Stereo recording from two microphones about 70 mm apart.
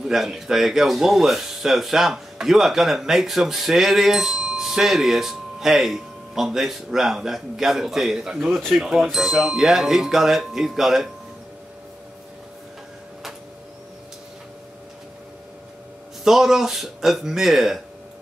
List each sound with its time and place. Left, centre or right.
0.0 s speech: centre
16.3 s speech: centre